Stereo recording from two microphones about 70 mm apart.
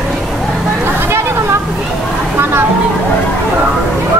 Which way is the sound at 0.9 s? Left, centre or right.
Right.